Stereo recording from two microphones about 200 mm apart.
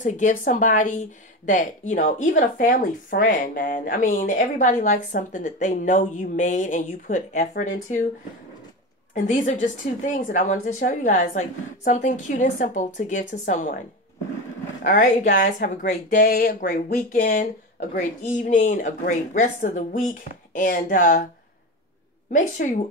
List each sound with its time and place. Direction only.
0.0 s a woman's voice: 40° left (ahead or behind)
9.1 s a woman's voice: 40° left (ahead or behind)
14.8 s a woman's voice: 40° left (ahead or behind)
22.3 s a woman's voice: 40° left (ahead or behind)